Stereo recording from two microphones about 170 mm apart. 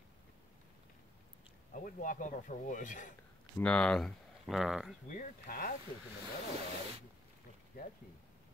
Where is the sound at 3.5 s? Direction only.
5° left (ahead or behind).